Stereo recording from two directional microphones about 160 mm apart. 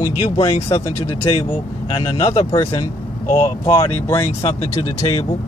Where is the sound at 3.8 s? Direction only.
15° left (ahead or behind).